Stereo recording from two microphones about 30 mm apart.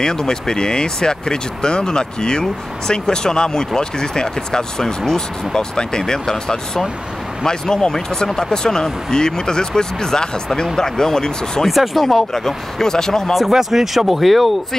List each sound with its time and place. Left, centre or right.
0.0 s speech: left
11.6 s speech: centre
12.4 s speech: centre
13.5 s speech: centre